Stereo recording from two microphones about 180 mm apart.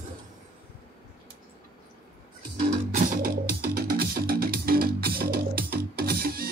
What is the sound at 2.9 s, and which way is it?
Music, 55° right (ahead or behind).